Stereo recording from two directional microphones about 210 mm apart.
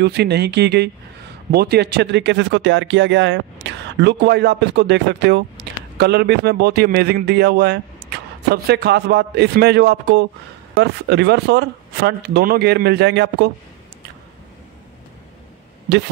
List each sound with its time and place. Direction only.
0.0 s speech: 50° right (ahead or behind)
15.9 s speech: 55° right (ahead or behind)